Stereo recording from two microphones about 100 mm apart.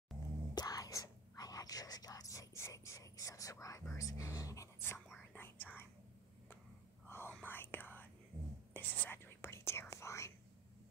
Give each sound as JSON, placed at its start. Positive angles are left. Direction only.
{"t": 0.6, "sound": "whispering", "side_deg": 35}
{"t": 7.1, "sound": "whispering", "side_deg": 25}
{"t": 8.3, "sound": "whispering", "side_deg": -20}
{"t": 8.7, "sound": "whispering", "side_deg": 20}